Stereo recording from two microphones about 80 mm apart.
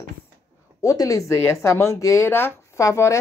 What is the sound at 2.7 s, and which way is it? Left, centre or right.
Speech, left.